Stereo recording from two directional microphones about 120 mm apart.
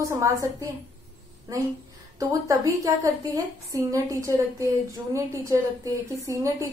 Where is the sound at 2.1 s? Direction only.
25° right (ahead or behind).